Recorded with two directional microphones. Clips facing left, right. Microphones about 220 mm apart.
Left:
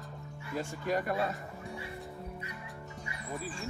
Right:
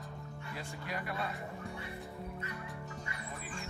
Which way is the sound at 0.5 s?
45° left (ahead or behind).